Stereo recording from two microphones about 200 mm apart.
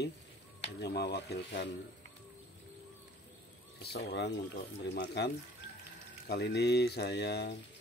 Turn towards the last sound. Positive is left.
turn(degrees=55)  # may be behind; listen again after turning